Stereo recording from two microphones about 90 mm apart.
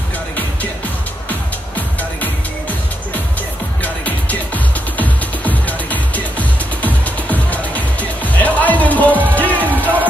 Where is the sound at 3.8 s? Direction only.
15° left (ahead or behind).